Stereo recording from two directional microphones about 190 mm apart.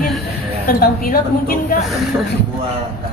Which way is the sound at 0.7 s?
50° left (ahead or behind).